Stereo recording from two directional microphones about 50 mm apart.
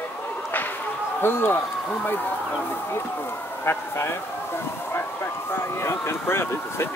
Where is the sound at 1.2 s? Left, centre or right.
Left.